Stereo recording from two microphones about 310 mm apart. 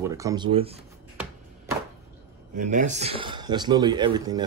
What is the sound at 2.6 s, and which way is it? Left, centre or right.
Speech, right.